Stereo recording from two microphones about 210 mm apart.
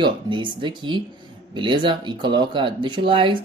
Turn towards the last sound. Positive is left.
turn(degrees=-25)  # may be behind; listen again after turning